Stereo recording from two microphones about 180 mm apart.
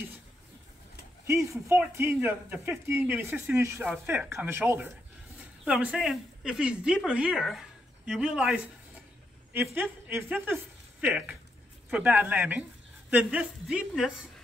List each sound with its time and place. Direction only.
1.2 s a woman's voice: 15° right (ahead or behind)
9.8 s a woman's voice: 10° right (ahead or behind)